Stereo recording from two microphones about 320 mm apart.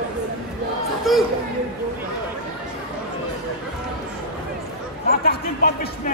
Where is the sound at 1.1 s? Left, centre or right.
Centre.